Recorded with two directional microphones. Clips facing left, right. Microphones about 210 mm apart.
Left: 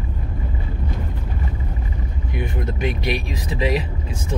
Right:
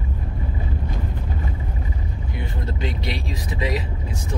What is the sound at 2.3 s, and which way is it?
Vehicle, 20° left (ahead or behind).